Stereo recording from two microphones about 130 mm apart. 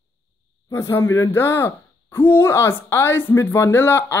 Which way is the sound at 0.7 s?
20° left (ahead or behind).